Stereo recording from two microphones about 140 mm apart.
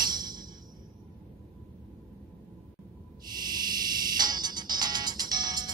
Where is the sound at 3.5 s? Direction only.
30° right (ahead or behind).